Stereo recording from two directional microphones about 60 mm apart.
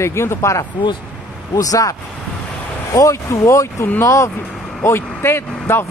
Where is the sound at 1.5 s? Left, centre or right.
Left.